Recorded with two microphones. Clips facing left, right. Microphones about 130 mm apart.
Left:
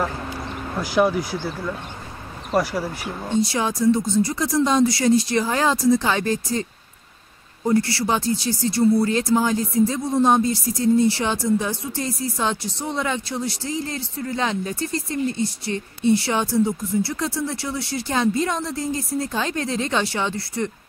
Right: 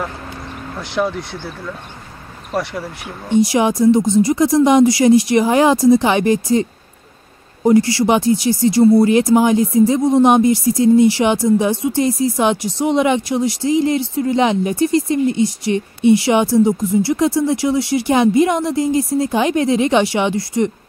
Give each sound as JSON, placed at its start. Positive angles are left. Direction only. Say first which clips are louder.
{"t": 0.7, "sound": "speech", "louder": "left 1 dB", "side_deg": 0}
{"t": 2.5, "sound": "speech", "louder": "left 1 dB", "side_deg": 0}
{"t": 3.5, "sound": "speech", "louder": "right 6 dB", "side_deg": -15}